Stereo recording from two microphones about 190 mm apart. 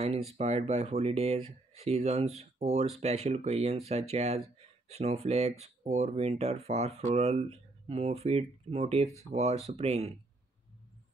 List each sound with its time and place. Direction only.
0.3 s speech: 35° right (ahead or behind)